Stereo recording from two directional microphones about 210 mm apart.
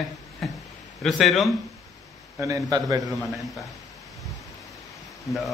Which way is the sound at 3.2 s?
Centre (ahead or behind).